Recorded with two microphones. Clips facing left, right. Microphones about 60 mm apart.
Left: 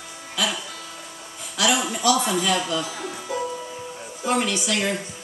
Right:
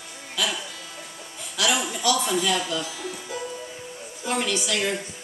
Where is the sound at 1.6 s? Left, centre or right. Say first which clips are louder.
Left 3 dB; centre.